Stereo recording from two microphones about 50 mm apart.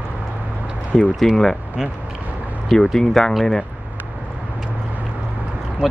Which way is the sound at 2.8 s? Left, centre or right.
Centre.